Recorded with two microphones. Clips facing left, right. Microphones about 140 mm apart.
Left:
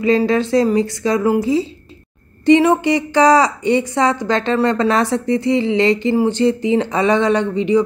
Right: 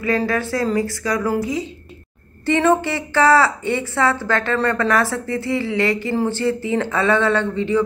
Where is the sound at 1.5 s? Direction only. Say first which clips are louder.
Left 7 dB; 30° left (ahead or behind).